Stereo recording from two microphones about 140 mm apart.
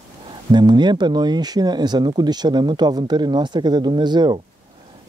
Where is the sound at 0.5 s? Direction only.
30° right (ahead or behind).